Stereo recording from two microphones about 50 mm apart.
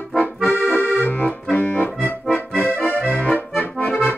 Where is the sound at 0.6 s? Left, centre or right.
Left.